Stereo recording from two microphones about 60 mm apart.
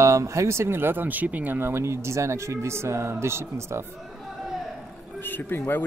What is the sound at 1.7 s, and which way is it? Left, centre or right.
Speech, right.